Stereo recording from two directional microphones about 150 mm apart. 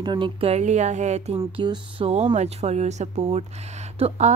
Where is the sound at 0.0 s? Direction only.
30° right (ahead or behind); by 1.4 s 45° right (ahead or behind).